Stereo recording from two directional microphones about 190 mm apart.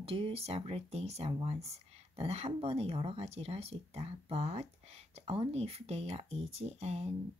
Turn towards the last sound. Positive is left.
turn(degrees=-35)  # may be behind; listen again after turning